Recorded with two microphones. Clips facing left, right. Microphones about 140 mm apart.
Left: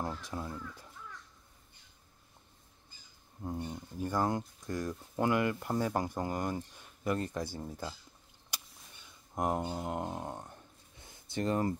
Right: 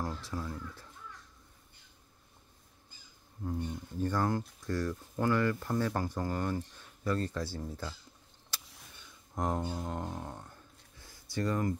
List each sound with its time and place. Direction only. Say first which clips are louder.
0.0 s speech: even; 20° left (ahead or behind)
3.4 s speech: right 2 dB; 25° left (ahead or behind)
9.3 s a sound: left 1 dB; 15° left (ahead or behind)